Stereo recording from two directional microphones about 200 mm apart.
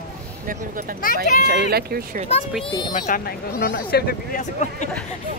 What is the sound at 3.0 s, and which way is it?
Speech, 45° left (ahead or behind).